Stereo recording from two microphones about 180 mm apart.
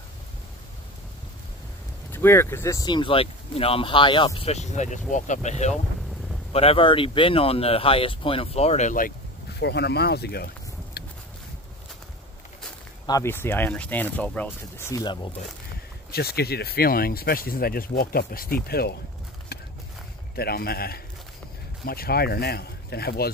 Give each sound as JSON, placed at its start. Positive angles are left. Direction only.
{"t": 2.1, "sound": "speech", "side_deg": 15}
{"t": 9.6, "sound": "speech", "side_deg": 70}
{"t": 11.0, "sound": "a sound", "side_deg": 60}
{"t": 13.0, "sound": "speech", "side_deg": 15}
{"t": 16.1, "sound": "speech", "side_deg": 60}
{"t": 19.5, "sound": "horse", "side_deg": 60}
{"t": 20.3, "sound": "speech", "side_deg": 60}